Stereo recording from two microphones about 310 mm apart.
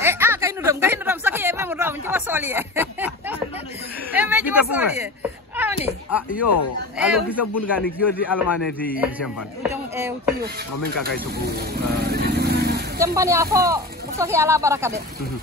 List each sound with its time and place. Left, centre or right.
0.0 s a sound: centre
7.0 s a man's voice: centre
9.9 s speech: centre
11.9 s vehicle: right
13.0 s speech: centre